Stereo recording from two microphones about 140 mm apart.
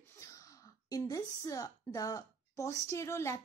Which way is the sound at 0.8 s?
25° left (ahead or behind).